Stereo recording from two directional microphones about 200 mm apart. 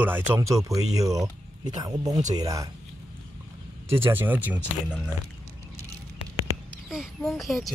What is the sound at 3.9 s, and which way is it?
Speech, 10° right (ahead or behind).